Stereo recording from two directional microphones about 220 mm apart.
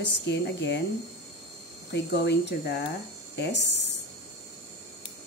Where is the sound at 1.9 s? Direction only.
50° left (ahead or behind).